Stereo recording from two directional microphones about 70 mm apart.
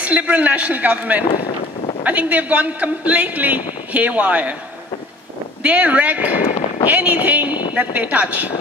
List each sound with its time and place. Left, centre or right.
0.0 s a man's voice: right
5.6 s a man's voice: right